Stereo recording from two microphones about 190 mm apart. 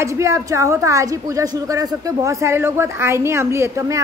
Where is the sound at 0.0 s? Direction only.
15° right (ahead or behind).